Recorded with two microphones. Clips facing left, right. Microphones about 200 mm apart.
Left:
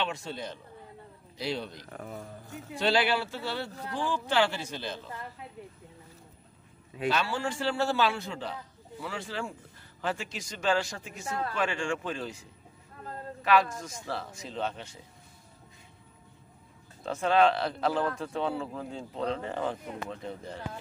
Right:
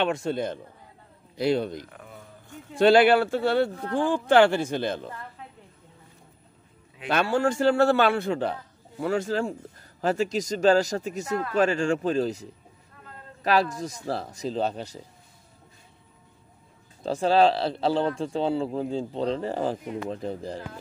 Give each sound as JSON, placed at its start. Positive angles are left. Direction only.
{"t": 0.0, "sound": "speech", "side_deg": -50}
{"t": 1.9, "sound": "speech", "side_deg": 45}
{"t": 2.8, "sound": "speech", "side_deg": -55}
{"t": 7.1, "sound": "a man's voice", "side_deg": -55}
{"t": 9.0, "sound": "speech", "side_deg": -45}
{"t": 17.0, "sound": "speech", "side_deg": -35}